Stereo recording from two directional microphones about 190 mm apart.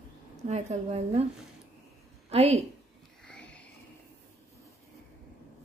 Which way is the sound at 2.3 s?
35° right (ahead or behind).